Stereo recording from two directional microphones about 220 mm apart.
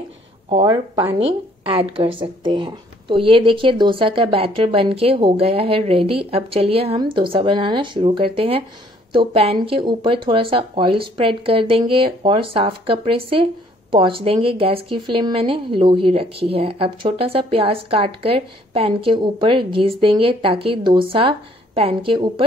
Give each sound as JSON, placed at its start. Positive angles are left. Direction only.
{"t": 0.5, "sound": "a woman's voice", "side_deg": -20}